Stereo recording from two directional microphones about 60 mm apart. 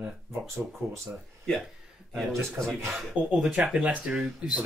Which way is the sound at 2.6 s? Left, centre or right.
Right.